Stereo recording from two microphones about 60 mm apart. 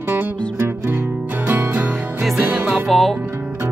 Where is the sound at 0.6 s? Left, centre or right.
Right.